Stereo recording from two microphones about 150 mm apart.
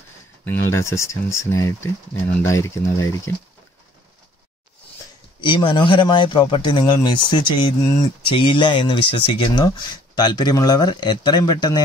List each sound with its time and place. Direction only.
0.5 s speech: 20° left (ahead or behind)
5.4 s speech: 35° left (ahead or behind)